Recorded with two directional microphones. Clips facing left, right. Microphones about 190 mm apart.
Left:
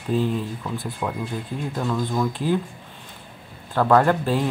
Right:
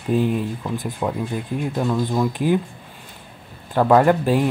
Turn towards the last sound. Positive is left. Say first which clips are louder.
# right 3 dB
turn(degrees=-15)  # may be behind; listen again after turning